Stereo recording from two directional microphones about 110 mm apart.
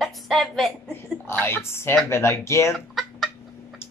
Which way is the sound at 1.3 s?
20° left (ahead or behind).